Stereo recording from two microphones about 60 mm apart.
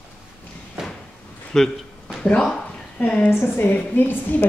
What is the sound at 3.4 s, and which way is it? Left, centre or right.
A woman's voice, left.